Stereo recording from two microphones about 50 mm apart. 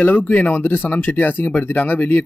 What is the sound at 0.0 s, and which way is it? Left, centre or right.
A man's voice, left.